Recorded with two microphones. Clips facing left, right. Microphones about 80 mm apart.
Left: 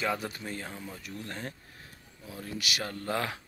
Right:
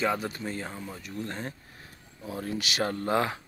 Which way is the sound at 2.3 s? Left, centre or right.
Right.